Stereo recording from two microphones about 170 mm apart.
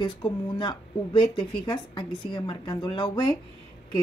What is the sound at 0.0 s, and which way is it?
A woman's voice, 30° left (ahead or behind).